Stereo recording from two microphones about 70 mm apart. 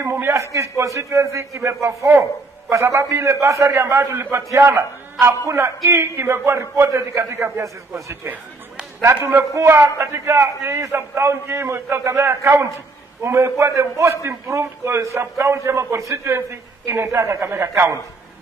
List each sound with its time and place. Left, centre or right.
0.0 s a man's voice: right